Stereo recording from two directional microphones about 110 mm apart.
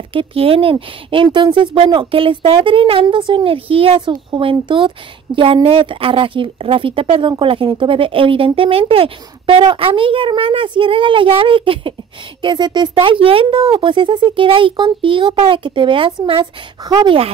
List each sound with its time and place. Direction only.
0.1 s speech: 55° right (ahead or behind)
12.9 s speech: 55° right (ahead or behind)
16.8 s speech: 40° right (ahead or behind)